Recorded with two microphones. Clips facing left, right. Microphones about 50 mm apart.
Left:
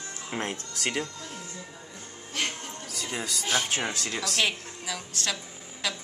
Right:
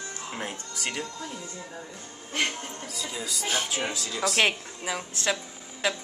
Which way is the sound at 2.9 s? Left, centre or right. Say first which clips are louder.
Left 2 dB; left.